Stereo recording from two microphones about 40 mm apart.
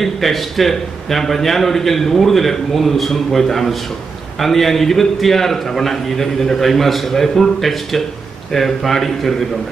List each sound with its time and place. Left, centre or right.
0.0 s a man's voice: centre